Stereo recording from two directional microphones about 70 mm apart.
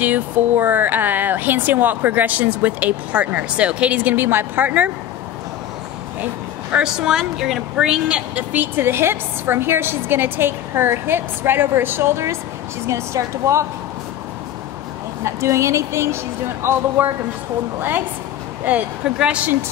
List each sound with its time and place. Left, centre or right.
0.0 s speech: right
6.7 s speech: centre
8.5 s a woman's voice: right
15.2 s a woman's voice: right
18.7 s speech: centre